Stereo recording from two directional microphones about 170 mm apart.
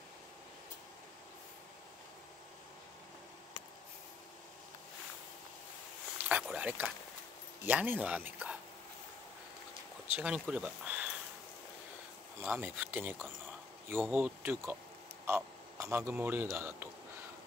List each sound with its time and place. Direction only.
6.2 s speech: 5° right (ahead or behind)
10.1 s speech: 5° right (ahead or behind)
12.4 s a man's voice: 10° right (ahead or behind)